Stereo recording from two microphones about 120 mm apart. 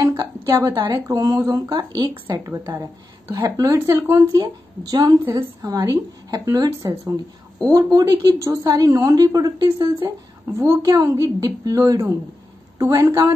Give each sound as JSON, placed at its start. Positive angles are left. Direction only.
{"t": 0.0, "sound": "a sound", "side_deg": -25}
{"t": 0.5, "sound": "speech", "side_deg": -35}
{"t": 0.9, "sound": "a woman's voice", "side_deg": -25}
{"t": 4.4, "sound": "a woman's voice", "side_deg": -35}
{"t": 10.4, "sound": "a woman's voice", "side_deg": -25}